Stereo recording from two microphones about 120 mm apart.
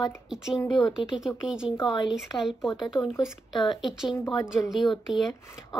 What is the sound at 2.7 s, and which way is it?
Speech, 30° left (ahead or behind).